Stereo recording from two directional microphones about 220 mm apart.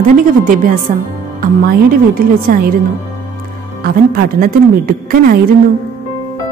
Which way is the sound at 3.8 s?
40° right (ahead or behind).